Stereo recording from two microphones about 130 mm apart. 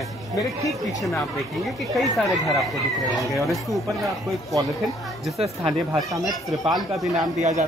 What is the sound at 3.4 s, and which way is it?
Speech, centre (ahead or behind).